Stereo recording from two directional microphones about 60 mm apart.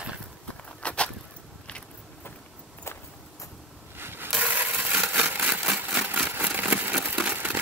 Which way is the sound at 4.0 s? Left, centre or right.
Right.